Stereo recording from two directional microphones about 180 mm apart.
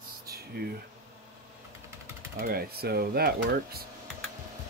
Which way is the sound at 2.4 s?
55° right (ahead or behind).